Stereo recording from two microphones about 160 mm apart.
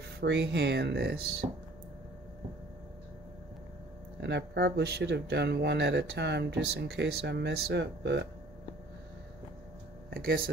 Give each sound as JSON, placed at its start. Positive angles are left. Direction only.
{"t": 0.2, "sound": "speech", "side_deg": -90}
{"t": 4.2, "sound": "speech", "side_deg": -90}
{"t": 10.0, "sound": "speech", "side_deg": -70}